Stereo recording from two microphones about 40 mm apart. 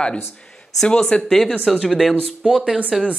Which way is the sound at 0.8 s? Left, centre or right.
Left.